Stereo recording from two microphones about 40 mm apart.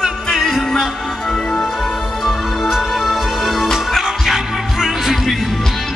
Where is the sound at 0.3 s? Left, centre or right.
Centre.